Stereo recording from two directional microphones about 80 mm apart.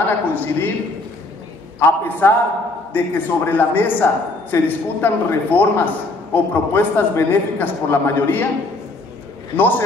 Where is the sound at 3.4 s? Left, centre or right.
Left.